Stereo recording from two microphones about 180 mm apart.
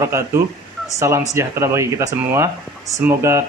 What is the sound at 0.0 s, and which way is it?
Speech, 15° right (ahead or behind).